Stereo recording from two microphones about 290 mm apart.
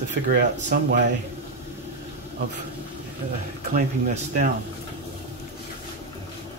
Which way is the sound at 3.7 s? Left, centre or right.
Right.